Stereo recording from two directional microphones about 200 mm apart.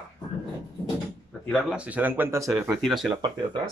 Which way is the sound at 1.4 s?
5° right (ahead or behind).